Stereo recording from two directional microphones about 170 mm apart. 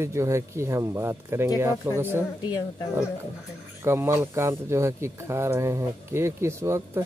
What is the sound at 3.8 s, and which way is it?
Speech, 15° right (ahead or behind).